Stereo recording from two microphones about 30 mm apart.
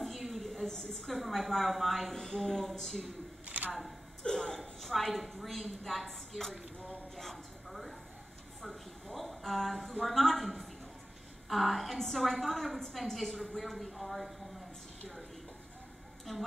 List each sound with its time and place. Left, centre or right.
0.0 s a sound: centre
1.0 s a woman's voice: centre
2.1 s a woman's voice: centre
3.4 s a sound: right
4.2 s speech: left
4.8 s a woman's voice: centre
8.6 s a sound: centre
10.0 s a woman's voice: centre
16.3 s a woman's voice: centre